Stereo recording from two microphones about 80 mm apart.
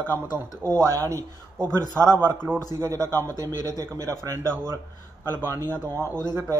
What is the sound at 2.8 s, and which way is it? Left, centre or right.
Speech, right.